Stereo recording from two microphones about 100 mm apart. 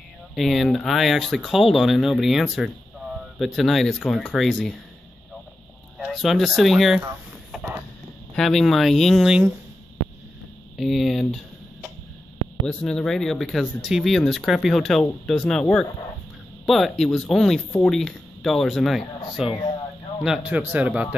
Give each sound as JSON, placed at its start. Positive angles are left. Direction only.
{"t": 0.3, "sound": "speech", "side_deg": 0}
{"t": 5.9, "sound": "speech", "side_deg": 0}
{"t": 8.4, "sound": "speech", "side_deg": 5}
{"t": 10.8, "sound": "speech", "side_deg": 0}
{"t": 12.6, "sound": "a man's voice", "side_deg": 5}